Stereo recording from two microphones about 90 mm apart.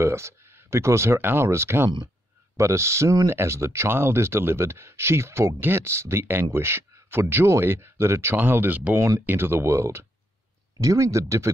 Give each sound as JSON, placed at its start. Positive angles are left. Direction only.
{"t": 0.0, "sound": "speech", "side_deg": -30}
{"t": 8.9, "sound": "speech", "side_deg": -35}